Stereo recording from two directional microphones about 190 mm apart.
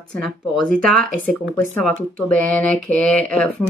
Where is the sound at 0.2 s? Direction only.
Centre (ahead or behind).